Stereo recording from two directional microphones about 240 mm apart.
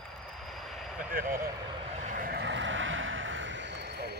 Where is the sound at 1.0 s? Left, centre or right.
Right.